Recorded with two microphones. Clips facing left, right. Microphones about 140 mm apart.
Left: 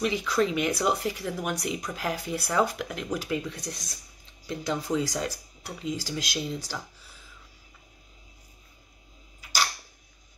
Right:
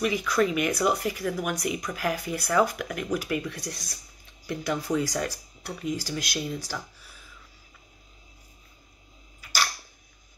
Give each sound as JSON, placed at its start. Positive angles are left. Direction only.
{"t": 0.0, "sound": "speech", "side_deg": 25}